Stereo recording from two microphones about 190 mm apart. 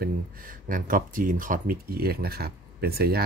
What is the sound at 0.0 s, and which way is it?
Speech, 45° right (ahead or behind).